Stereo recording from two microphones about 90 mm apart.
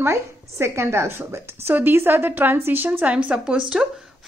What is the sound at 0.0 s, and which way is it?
A woman's voice, 30° right (ahead or behind).